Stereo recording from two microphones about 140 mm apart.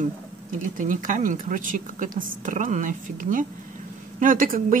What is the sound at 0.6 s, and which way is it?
Speech, 70° right (ahead or behind).